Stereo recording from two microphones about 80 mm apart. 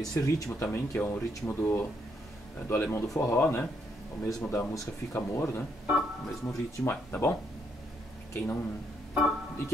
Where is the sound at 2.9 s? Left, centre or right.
Left.